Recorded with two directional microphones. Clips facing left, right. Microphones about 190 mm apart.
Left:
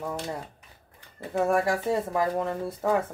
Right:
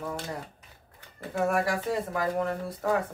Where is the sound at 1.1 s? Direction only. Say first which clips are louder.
Left 3 dB; 25° left (ahead or behind).